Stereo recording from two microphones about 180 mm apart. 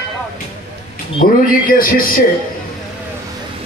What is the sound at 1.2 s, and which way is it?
Speech, 50° left (ahead or behind).